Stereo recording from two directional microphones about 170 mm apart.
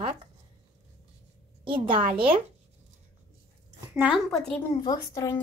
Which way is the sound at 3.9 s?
5° right (ahead or behind).